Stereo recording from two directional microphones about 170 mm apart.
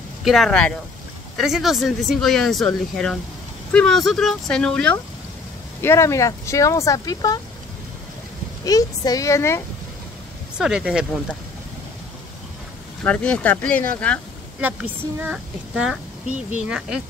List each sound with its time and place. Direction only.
0.2 s speech: centre (ahead or behind)
5.8 s speech: 15° left (ahead or behind)
8.6 s a woman's voice: 20° left (ahead or behind)
10.6 s speech: 5° right (ahead or behind)
13.0 s speech: 5° left (ahead or behind)
14.6 s speech: 10° right (ahead or behind)